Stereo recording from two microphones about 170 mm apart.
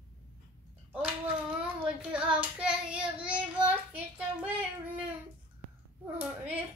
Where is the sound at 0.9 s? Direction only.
5° right (ahead or behind).